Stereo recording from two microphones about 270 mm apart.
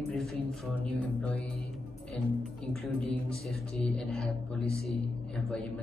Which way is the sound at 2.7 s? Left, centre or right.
Centre.